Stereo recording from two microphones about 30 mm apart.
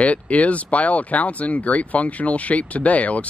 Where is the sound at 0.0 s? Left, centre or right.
Left.